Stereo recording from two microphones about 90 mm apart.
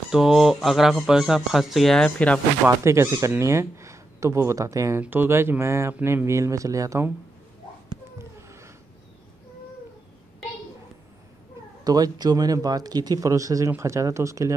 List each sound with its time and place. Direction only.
0.1 s speech: 5° right (ahead or behind); by 2.4 s 15° left (ahead or behind)
2.8 s speech: 30° right (ahead or behind)
5.0 s speech: 25° right (ahead or behind)
8.4 s a sound: 30° right (ahead or behind)
11.8 s speech: 45° right (ahead or behind)